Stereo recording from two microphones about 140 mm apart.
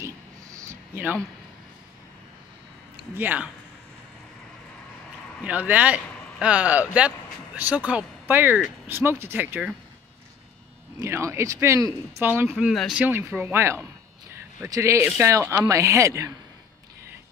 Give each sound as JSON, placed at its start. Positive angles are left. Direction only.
{"t": 0.0, "sound": "a sound", "side_deg": -20}
{"t": 3.2, "sound": "speech", "side_deg": -10}
{"t": 5.4, "sound": "speech", "side_deg": -10}
{"t": 11.0, "sound": "speech", "side_deg": -20}
{"t": 12.4, "sound": "speech", "side_deg": -10}
{"t": 13.4, "sound": "speech", "side_deg": -20}